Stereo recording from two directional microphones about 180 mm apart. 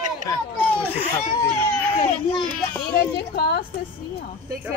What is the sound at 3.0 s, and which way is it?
Speech, 65° left (ahead or behind).